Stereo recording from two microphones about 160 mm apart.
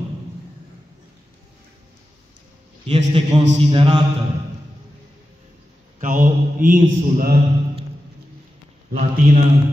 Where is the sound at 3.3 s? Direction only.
25° right (ahead or behind).